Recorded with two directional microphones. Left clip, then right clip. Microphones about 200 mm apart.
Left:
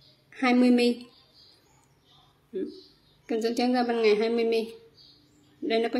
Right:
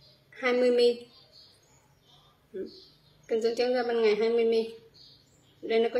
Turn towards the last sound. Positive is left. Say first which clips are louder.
# even
turn(degrees=40)  # may be behind; listen again after turning